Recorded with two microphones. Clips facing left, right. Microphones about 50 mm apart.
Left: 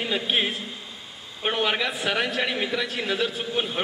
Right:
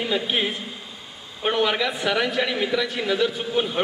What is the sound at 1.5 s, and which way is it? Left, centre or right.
A man's voice, left.